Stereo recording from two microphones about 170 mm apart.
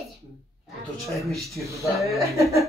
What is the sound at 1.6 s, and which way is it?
Speech, 15° right (ahead or behind).